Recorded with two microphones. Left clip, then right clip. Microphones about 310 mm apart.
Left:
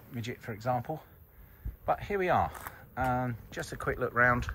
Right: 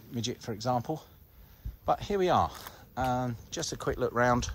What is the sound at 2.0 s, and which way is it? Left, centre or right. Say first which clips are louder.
Speech: right 2 dB; centre.